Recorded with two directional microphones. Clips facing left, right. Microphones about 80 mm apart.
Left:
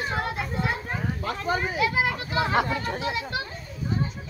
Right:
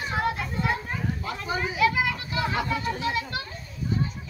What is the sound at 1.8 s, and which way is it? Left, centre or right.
Children playing, left.